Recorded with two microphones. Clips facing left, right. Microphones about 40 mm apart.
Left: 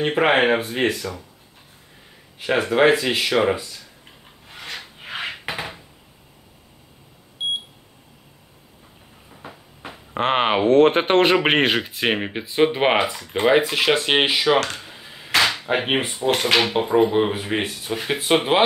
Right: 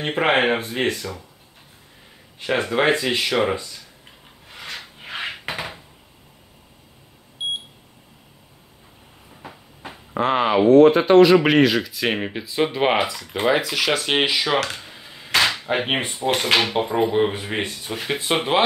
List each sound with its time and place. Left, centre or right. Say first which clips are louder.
0.0 s speech: left 2 dB; centre
2.3 s speech: left 2 dB; centre
4.5 s wood: even; centre
7.4 s beep: left 2 dB; centre
9.3 s train: even; centre
10.1 s speech: right 1 dB; left
12.1 s speech: left 1 dB; centre
13.6 s speech: left 3 dB; left
14.4 s speech: left 3 dB; centre